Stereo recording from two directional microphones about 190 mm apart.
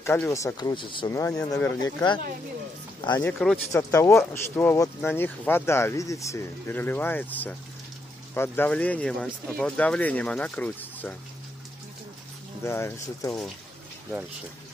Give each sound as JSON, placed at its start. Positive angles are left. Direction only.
{"t": 0.0, "sound": "speech", "side_deg": 15}
{"t": 3.2, "sound": "speech", "side_deg": 5}
{"t": 12.6, "sound": "speech", "side_deg": 15}